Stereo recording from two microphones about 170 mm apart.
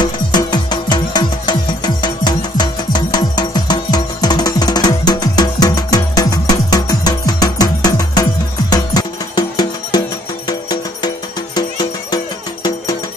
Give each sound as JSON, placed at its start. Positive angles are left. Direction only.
{"t": 0.0, "sound": "music", "side_deg": 25}
{"t": 11.5, "sound": "music", "side_deg": 25}